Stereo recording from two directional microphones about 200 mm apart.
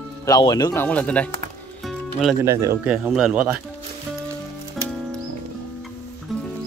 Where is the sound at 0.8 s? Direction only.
5° left (ahead or behind).